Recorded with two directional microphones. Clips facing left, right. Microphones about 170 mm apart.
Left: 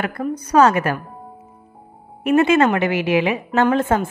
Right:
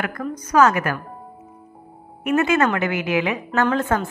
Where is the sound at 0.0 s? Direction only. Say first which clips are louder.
Left 3 dB; 30° left (ahead or behind).